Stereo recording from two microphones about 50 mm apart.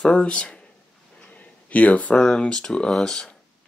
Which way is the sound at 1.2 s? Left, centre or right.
Left.